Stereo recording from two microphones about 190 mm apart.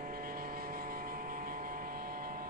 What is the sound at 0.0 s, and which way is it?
Vehicle, 50° right (ahead or behind).